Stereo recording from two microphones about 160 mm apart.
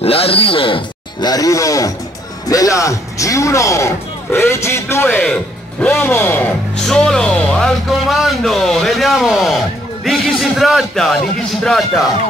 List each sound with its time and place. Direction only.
0.0 s a man's voice: 35° left (ahead or behind); by 12.1 s 5° left (ahead or behind)